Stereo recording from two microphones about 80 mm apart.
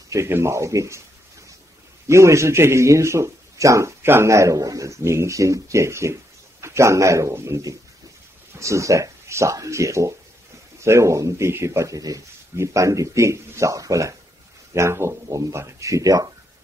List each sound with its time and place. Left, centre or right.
0.1 s a man's voice: right
2.0 s a man's voice: right